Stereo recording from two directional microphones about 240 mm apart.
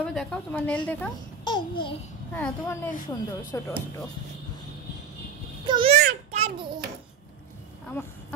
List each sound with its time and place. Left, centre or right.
0.0 s a woman's voice: centre
1.4 s babbling: centre
2.3 s speech: centre
5.7 s a sound: right